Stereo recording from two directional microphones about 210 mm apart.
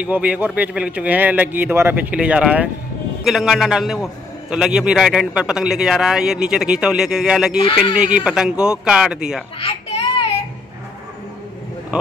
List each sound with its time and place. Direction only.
0.0 s a man's voice: 5° right (ahead or behind)
9.6 s a sound: 25° left (ahead or behind)
11.9 s speech: 5° right (ahead or behind)